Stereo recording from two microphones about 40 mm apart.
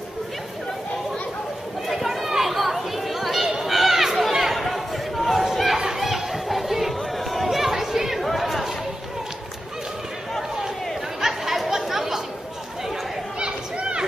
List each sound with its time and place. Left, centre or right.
1.9 s chatter: centre
8.2 s chatter: centre
11.1 s chatter: centre
13.4 s chatter: right